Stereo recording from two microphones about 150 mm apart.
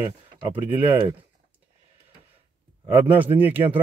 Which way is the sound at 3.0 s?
10° right (ahead or behind).